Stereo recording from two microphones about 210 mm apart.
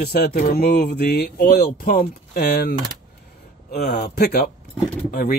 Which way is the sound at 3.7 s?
50° left (ahead or behind).